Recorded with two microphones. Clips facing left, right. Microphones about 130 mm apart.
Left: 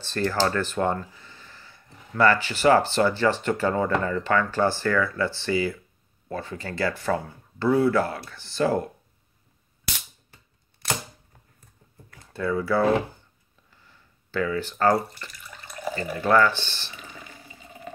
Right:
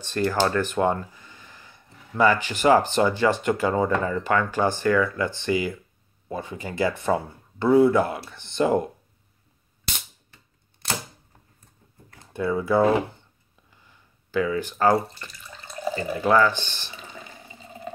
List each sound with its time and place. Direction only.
0.0 s speech: 15° right (ahead or behind)
12.3 s speech: 20° right (ahead or behind)
13.7 s a sound: 15° right (ahead or behind)
15.1 s water tap: 25° right (ahead or behind)
15.9 s speech: 15° right (ahead or behind)
16.9 s water: 25° right (ahead or behind)